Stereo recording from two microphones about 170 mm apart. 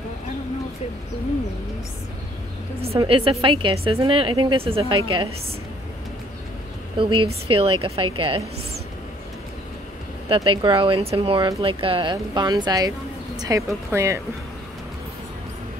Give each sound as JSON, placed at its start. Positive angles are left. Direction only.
{"t": 3.0, "sound": "speech", "side_deg": -35}
{"t": 7.0, "sound": "speech", "side_deg": -30}
{"t": 10.2, "sound": "speech", "side_deg": -30}